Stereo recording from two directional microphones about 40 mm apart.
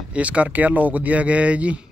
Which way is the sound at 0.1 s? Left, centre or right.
Right.